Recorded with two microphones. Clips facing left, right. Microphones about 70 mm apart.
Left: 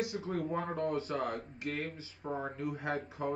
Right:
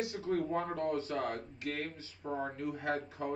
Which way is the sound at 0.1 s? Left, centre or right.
Centre.